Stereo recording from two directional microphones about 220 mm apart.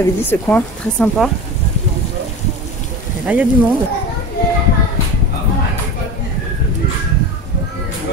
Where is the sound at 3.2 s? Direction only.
5° right (ahead or behind).